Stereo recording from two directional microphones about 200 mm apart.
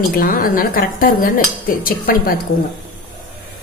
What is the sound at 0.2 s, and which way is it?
A woman's voice, 45° left (ahead or behind).